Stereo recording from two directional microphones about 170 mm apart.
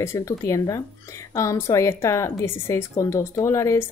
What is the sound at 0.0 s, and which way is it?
A woman's voice, 15° left (ahead or behind).